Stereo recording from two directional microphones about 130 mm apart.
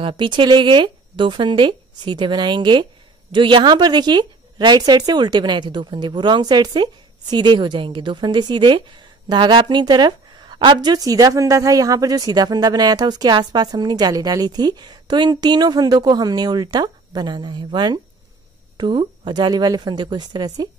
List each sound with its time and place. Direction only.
0.0 s speech: 40° right (ahead or behind)